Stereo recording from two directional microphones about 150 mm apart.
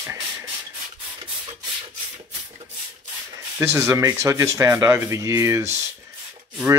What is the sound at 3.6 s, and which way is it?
Speech, 20° right (ahead or behind).